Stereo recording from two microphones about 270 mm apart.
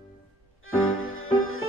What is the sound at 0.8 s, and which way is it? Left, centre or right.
Music, left.